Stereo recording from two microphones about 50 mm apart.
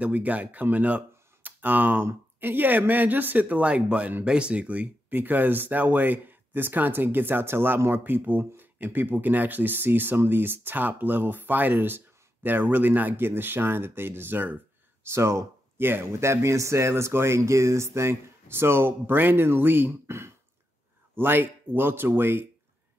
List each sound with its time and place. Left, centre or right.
0.0 s speech: right
15.0 s speech: right
15.8 s speech: right
16.1 s speech: right
21.1 s speech: right